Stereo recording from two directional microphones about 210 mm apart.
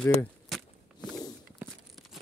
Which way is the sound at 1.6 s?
Centre (ahead or behind).